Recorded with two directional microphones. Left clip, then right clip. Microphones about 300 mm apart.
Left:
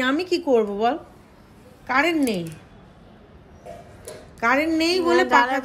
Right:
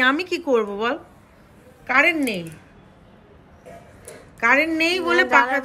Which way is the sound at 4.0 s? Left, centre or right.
Centre.